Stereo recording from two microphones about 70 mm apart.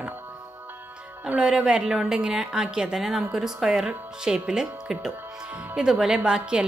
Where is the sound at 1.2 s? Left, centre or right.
Centre.